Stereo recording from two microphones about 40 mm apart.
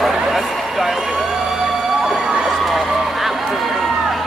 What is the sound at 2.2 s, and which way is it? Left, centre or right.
Emergency vehicle, centre.